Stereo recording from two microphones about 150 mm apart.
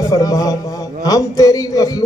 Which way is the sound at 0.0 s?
25° left (ahead or behind).